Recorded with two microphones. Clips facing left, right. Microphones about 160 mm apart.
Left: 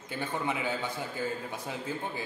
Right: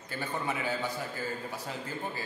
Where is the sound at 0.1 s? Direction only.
20° left (ahead or behind).